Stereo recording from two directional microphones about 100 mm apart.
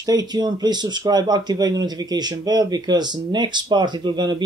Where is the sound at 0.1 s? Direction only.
45° right (ahead or behind).